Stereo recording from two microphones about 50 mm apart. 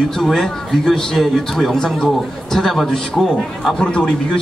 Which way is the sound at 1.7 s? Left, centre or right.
Centre.